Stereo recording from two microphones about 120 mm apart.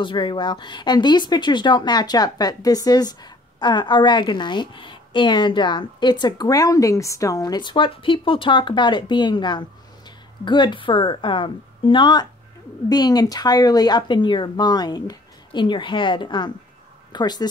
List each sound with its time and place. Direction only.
0.0 s a woman's voice: 40° left (ahead or behind)